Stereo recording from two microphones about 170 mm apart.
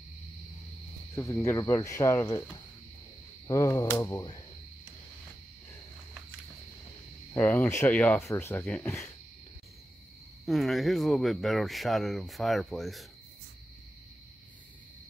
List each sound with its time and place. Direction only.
1.1 s speech: 15° left (ahead or behind)
7.3 s speech: 10° left (ahead or behind)
10.4 s speech: centre (ahead or behind)